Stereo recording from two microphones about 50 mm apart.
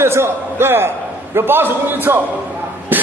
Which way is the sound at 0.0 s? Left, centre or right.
Right.